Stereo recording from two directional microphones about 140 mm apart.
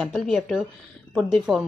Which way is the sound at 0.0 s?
Centre (ahead or behind).